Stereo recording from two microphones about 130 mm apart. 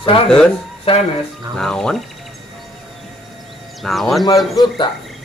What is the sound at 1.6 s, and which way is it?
Speech, 5° left (ahead or behind).